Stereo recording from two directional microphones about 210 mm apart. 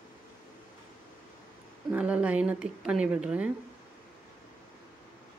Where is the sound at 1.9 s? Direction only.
5° right (ahead or behind).